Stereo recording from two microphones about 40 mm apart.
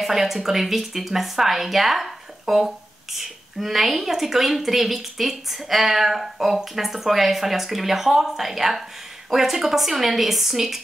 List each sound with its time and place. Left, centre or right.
0.0 s a woman's voice: centre